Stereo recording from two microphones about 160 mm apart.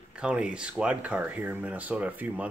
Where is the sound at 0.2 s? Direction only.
5° right (ahead or behind).